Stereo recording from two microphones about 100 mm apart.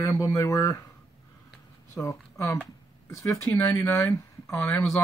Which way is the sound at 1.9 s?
30° left (ahead or behind).